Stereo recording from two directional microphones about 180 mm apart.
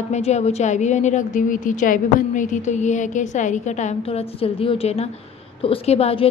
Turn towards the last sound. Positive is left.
turn(degrees=35)  # may be behind; listen again after turning